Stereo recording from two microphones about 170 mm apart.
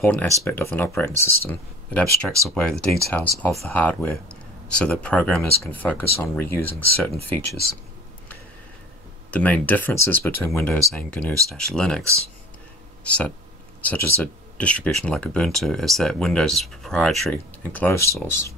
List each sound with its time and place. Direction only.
0.0 s speech: 10° left (ahead or behind)
7.4 s speech: 65° left (ahead or behind)
9.3 s speech: 10° left (ahead or behind)
13.0 s speech: 5° left (ahead or behind)